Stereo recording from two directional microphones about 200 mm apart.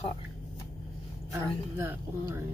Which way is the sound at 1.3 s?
15° right (ahead or behind).